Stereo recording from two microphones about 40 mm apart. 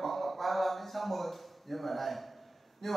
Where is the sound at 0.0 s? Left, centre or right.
Centre.